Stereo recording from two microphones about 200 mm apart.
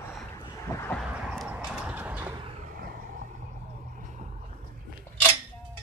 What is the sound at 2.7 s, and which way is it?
Vehicle, 45° right (ahead or behind).